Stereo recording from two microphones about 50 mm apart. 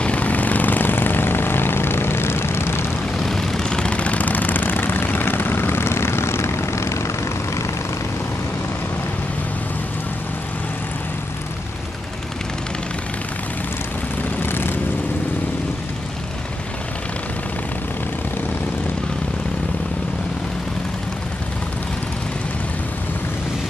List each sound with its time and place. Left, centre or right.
0.0 s vehicle: left
3.3 s vehicle: centre; by 7.1 s left
14.4 s vehicle: left